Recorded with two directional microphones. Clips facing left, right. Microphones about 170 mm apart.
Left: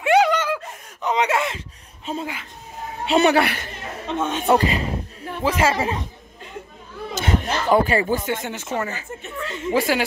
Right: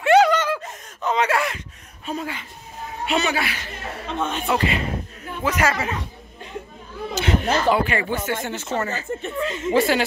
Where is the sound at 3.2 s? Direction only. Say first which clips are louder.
Left 9 dB; 60° left (ahead or behind).